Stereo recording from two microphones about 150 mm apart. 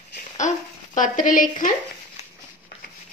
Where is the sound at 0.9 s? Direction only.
60° left (ahead or behind).